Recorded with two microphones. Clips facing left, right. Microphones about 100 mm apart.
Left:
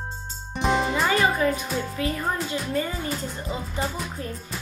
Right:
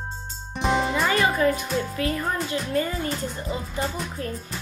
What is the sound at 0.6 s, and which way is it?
Music, centre (ahead or behind).